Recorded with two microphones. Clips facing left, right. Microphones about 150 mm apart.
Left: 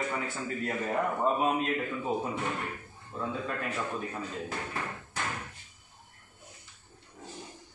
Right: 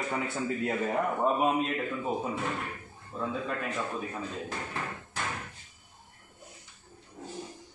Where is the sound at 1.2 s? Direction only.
5° right (ahead or behind).